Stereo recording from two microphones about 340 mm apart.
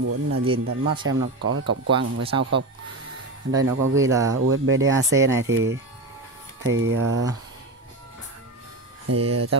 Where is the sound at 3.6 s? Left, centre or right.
Right.